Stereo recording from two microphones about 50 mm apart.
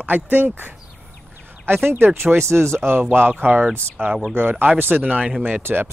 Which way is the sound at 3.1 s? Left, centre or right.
Right.